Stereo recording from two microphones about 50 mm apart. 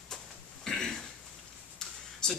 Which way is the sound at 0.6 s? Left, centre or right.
Centre.